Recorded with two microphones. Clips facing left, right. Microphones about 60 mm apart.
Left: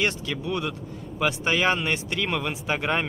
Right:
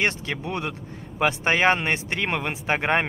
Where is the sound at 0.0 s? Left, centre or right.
Right.